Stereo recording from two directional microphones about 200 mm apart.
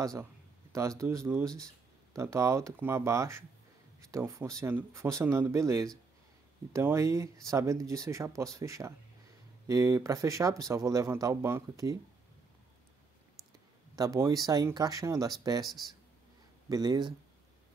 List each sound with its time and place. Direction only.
0.0 s speech: 15° right (ahead or behind)
13.9 s speech: 15° right (ahead or behind)